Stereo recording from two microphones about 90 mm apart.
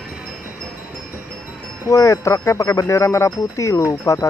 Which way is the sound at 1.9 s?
35° left (ahead or behind).